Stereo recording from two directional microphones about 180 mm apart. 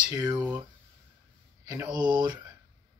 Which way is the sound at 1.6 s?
20° right (ahead or behind).